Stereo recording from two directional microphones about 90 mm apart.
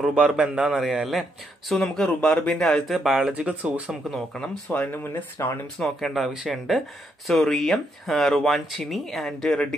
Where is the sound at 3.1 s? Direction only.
10° right (ahead or behind).